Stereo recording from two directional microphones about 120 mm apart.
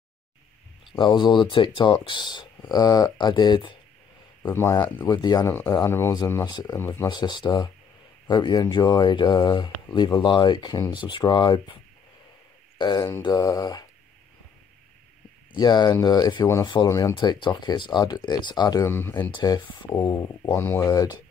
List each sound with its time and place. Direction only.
0.9 s speech: 40° left (ahead or behind)
4.4 s speech: 20° left (ahead or behind)
5.0 s speech: 35° left (ahead or behind)
5.5 s speech: 25° left (ahead or behind)
6.1 s speech: 30° left (ahead or behind)
15.5 s speech: 35° left (ahead or behind)
18.9 s speech: 20° left (ahead or behind)
19.3 s speech: 35° left (ahead or behind)
20.5 s speech: 20° left (ahead or behind)
20.9 s speech: 30° left (ahead or behind)